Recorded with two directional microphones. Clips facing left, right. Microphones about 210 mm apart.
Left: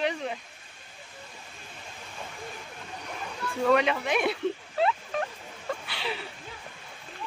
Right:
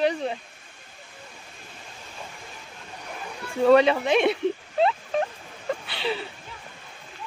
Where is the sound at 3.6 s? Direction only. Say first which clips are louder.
Right 7 dB; 30° right (ahead or behind).